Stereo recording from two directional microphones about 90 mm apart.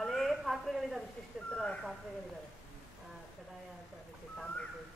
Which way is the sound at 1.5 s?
10° left (ahead or behind).